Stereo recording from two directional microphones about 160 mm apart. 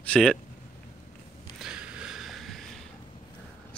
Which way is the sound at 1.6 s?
5° right (ahead or behind).